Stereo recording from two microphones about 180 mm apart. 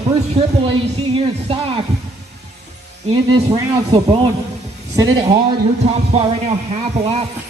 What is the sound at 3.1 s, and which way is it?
Speech, 30° right (ahead or behind).